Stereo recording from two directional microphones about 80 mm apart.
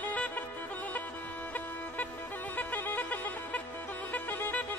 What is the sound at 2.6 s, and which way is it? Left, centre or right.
Music, left.